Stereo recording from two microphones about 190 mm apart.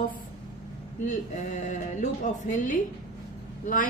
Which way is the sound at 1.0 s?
40° left (ahead or behind).